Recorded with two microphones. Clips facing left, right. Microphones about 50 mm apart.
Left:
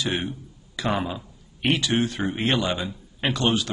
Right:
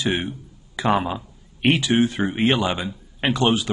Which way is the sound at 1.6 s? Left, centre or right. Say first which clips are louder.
Right 4 dB; right.